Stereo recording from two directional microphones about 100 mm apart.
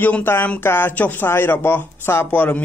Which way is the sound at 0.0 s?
20° left (ahead or behind).